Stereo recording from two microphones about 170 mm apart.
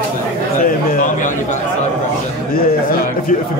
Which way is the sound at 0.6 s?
50° left (ahead or behind).